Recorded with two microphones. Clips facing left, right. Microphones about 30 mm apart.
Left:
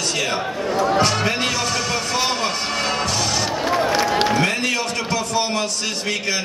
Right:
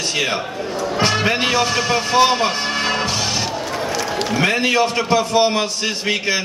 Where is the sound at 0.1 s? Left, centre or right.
Right.